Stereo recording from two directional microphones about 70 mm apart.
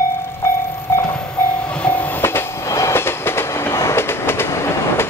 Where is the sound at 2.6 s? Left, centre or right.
Left.